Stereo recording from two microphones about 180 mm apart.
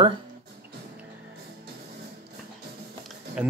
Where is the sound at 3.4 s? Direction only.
5° right (ahead or behind).